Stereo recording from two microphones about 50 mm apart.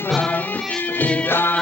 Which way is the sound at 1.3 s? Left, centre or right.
Left.